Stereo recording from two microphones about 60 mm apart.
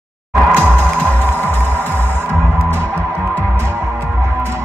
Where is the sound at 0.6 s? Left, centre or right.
Left.